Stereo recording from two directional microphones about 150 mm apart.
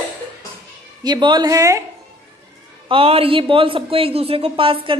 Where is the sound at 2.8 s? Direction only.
35° right (ahead or behind).